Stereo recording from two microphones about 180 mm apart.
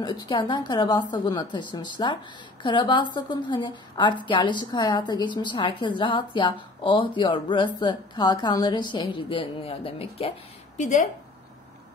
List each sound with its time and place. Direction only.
0.0 s a woman's voice: 25° left (ahead or behind)
10.8 s speech: 45° left (ahead or behind)